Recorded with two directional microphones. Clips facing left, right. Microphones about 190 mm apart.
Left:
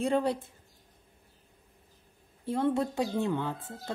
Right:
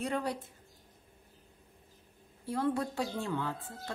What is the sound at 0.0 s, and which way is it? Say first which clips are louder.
Speech: left 6 dB; 25° left (ahead or behind).